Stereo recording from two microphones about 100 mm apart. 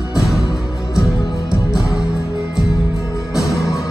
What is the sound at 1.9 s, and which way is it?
Music, 35° left (ahead or behind).